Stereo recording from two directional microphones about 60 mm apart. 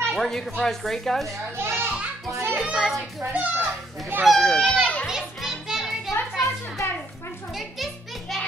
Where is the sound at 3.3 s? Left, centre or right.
Right.